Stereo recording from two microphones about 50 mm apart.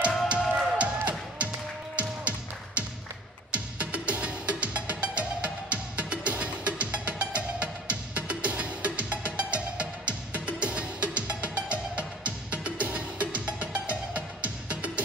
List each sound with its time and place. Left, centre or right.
0.3 s music: right